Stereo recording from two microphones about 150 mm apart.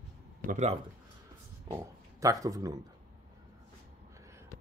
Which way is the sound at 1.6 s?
25° right (ahead or behind).